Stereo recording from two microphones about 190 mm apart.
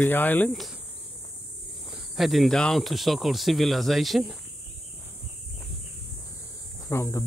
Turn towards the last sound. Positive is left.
turn(degrees=15)  # may be behind; listen again after turning